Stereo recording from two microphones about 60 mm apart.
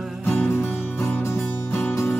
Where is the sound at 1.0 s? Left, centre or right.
Left.